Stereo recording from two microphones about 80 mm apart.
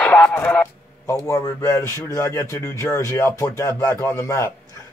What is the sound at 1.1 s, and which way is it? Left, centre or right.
A man's voice, left.